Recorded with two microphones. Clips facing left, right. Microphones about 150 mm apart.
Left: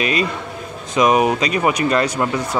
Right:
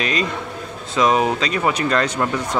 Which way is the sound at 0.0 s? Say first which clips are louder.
Left 2 dB; 10° left (ahead or behind).